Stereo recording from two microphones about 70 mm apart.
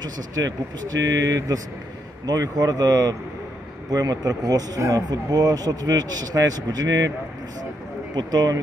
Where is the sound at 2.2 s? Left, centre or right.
Right.